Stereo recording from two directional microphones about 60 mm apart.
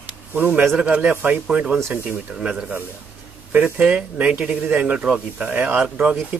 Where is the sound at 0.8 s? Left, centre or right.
Right.